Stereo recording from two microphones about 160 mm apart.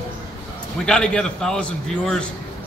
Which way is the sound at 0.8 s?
5° left (ahead or behind).